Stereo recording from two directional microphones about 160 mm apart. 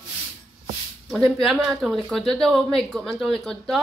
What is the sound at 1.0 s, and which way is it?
A woman's voice, 5° left (ahead or behind).